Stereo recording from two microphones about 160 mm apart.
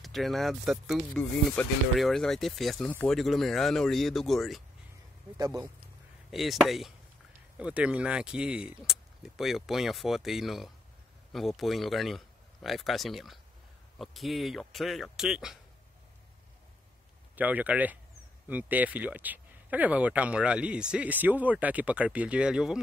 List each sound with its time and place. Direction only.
0.0 s speech: centre (ahead or behind)
2.9 s speech: 10° left (ahead or behind)
3.2 s speech: centre (ahead or behind)
5.4 s speech: 20° right (ahead or behind)
6.3 s speech: centre (ahead or behind)
17.4 s speech: 10° right (ahead or behind)